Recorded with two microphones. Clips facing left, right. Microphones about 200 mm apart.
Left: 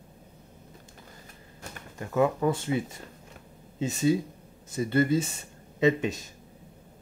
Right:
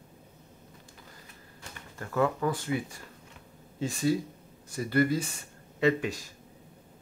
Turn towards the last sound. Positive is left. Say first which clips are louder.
# left 2 dB
turn(degrees=20)  # may be behind; listen again after turning